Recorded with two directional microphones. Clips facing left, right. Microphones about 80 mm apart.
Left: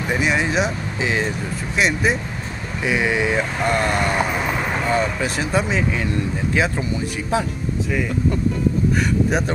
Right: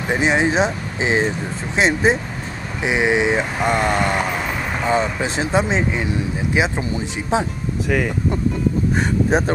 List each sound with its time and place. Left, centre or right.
0.1 s speech: right
8.9 s speech: right